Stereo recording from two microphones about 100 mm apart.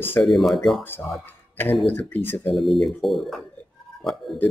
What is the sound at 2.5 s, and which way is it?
Speech, centre (ahead or behind).